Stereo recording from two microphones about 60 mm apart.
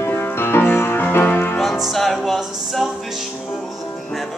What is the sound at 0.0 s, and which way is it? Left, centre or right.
Music, left.